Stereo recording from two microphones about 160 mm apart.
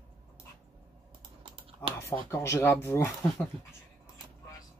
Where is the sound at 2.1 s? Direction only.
15° left (ahead or behind).